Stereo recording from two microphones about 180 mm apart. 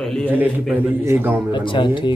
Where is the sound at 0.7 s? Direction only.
15° right (ahead or behind).